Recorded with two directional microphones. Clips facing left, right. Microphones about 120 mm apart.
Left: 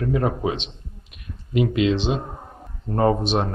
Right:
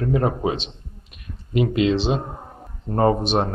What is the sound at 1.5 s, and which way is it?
Speech, 40° right (ahead or behind).